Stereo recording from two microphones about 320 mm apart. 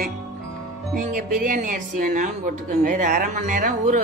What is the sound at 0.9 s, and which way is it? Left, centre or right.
Speech, right.